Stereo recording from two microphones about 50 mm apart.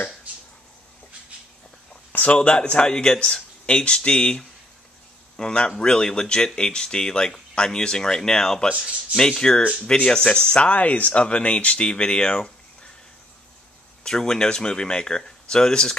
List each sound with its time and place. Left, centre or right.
0.3 s a sound: right
2.1 s speech: left
14.0 s speech: centre